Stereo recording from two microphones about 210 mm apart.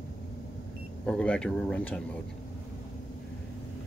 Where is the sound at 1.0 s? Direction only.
5° left (ahead or behind).